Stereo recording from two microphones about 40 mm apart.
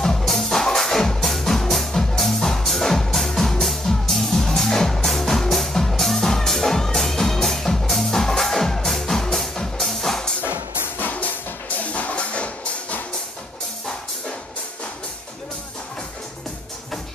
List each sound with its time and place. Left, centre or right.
0.2 s music: centre
11.0 s music: left
11.9 s music: left